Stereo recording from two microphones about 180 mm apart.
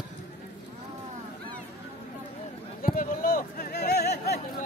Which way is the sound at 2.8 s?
50° left (ahead or behind).